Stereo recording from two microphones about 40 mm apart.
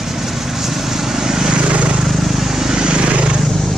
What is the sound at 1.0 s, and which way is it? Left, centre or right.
Vehicle, centre.